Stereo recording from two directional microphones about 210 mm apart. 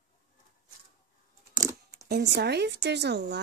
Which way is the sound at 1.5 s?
15° right (ahead or behind).